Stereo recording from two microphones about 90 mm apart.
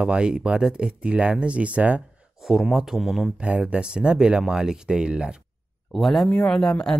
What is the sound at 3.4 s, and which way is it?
Speech, 15° right (ahead or behind).